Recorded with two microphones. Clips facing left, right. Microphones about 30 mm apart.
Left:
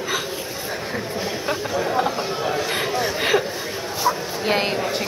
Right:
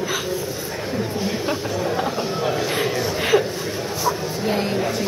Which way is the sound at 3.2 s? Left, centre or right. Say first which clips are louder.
Right 3 dB; centre.